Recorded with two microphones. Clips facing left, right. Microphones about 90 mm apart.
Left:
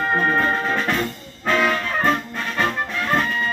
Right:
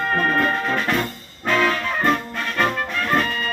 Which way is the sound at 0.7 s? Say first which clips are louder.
Even; centre (ahead or behind).